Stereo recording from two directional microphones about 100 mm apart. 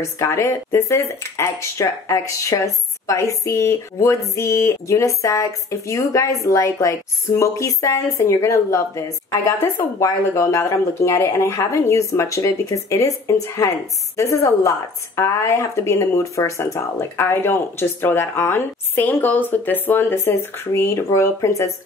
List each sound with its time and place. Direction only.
0.2 s a woman's voice: 30° left (ahead or behind)